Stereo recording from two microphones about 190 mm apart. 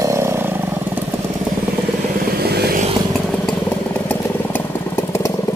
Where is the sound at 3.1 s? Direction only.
Centre (ahead or behind).